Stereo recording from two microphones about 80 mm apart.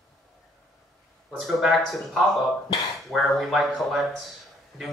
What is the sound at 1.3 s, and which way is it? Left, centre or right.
A man's voice, centre.